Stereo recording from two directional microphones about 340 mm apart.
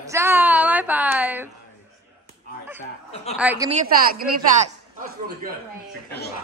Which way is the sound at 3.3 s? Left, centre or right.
Centre.